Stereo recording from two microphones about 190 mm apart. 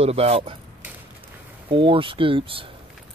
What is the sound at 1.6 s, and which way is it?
Speech, 25° right (ahead or behind).